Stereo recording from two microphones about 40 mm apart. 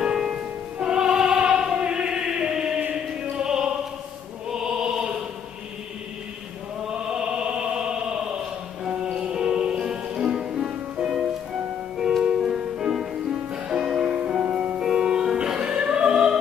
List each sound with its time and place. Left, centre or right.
0.0 s music: centre
1.6 s choir: right
2.9 s opera: centre
4.5 s music: centre
6.9 s music: right
14.8 s music: centre